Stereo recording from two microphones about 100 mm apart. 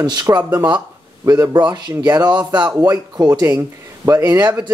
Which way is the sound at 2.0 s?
40° right (ahead or behind).